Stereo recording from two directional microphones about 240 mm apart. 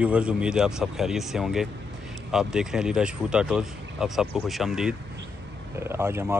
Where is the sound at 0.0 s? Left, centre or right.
Centre.